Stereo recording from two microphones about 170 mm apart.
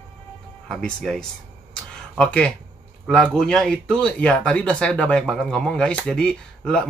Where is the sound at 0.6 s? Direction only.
5° left (ahead or behind).